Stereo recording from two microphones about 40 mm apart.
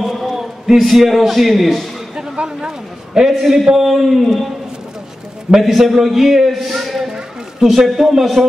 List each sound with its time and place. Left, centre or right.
0.3 s a man's voice: centre
2.1 s a sound: right
3.3 s a man's voice: centre
5.6 s a man's voice: centre
7.1 s a sound: centre
7.8 s a man's voice: centre